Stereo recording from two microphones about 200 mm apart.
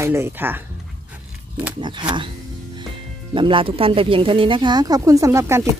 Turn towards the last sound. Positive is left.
turn(degrees=-15)  # may be behind; listen again after turning